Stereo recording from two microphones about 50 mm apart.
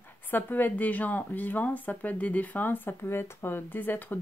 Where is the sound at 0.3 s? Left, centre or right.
Left.